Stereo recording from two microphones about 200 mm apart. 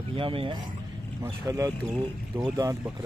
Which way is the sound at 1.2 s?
15° right (ahead or behind).